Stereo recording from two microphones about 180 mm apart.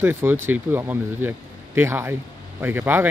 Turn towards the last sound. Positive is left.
turn(degrees=-10)  # may be behind; listen again after turning